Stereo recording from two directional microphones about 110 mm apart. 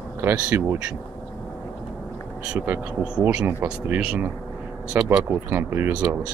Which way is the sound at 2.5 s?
20° right (ahead or behind).